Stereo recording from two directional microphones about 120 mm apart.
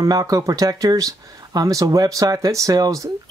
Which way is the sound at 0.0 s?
30° right (ahead or behind).